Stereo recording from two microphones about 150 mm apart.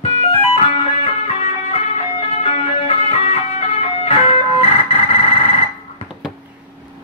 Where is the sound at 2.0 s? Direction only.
40° left (ahead or behind).